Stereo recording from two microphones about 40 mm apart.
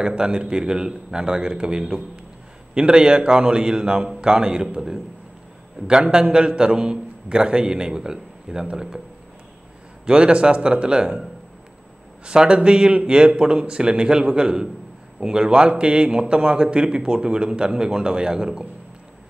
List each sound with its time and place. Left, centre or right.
0.2 s a man's voice: right
10.0 s a man's voice: right
12.3 s a man's voice: right